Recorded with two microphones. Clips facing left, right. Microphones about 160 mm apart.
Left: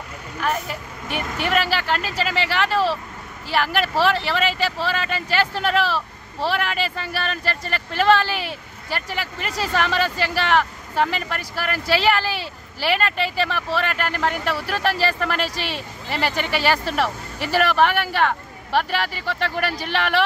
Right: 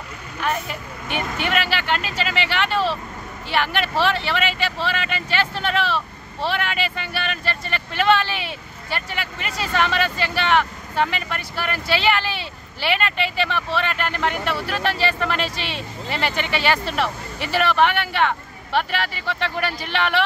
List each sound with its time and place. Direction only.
0.7 s speech: 40° left (ahead or behind)